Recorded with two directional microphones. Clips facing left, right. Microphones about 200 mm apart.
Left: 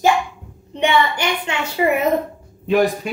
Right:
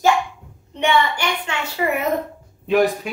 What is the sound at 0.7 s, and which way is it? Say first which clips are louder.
A woman's voice: left 1 dB; 20° left (ahead or behind).